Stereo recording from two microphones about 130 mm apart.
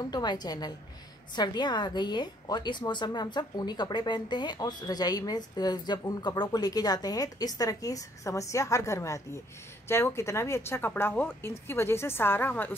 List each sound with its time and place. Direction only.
0.1 s a woman's voice: 30° left (ahead or behind); by 12.7 s 15° left (ahead or behind)